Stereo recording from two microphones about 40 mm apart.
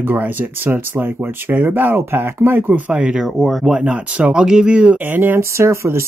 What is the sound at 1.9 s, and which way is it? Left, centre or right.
Speech, right.